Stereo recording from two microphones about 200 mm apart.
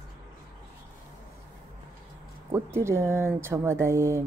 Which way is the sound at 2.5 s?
15° right (ahead or behind).